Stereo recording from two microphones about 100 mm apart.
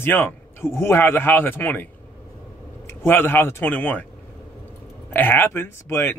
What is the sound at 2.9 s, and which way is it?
Speech, 20° left (ahead or behind).